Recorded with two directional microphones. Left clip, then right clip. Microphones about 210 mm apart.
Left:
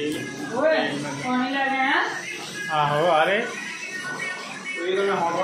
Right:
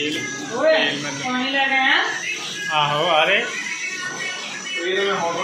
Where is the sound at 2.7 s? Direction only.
20° left (ahead or behind).